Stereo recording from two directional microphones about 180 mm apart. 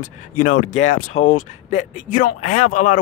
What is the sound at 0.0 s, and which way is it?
Speech, 45° left (ahead or behind).